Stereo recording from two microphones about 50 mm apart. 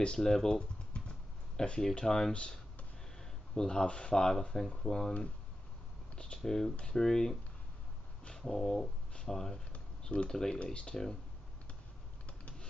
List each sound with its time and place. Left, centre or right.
0.0 s speech: centre
6.1 s typing: left
6.4 s speech: centre
10.6 s speech: left
12.3 s a sound: left